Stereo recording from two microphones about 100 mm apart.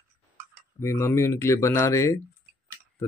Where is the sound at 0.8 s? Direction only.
25° left (ahead or behind).